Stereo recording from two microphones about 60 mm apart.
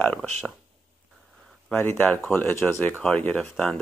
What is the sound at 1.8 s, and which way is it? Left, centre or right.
Speech, left.